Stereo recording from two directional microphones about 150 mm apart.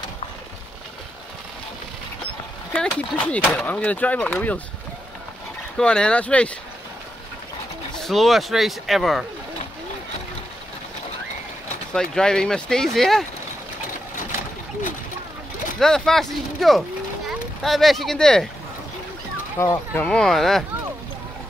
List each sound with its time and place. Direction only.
2.7 s speech: 5° left (ahead or behind)
5.8 s speech: 5° left (ahead or behind)
7.9 s speech: centre (ahead or behind)
11.9 s speech: 5° left (ahead or behind)
15.8 s speech: 5° left (ahead or behind)
19.6 s speech: 15° left (ahead or behind)
20.1 s speech: 5° left (ahead or behind)